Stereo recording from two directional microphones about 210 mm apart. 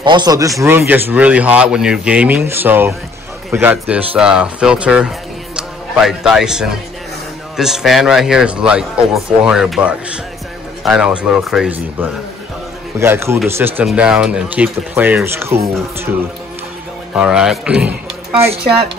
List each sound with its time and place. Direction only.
0.0 s a man's voice: 20° right (ahead or behind)
17.1 s speech: 5° right (ahead or behind)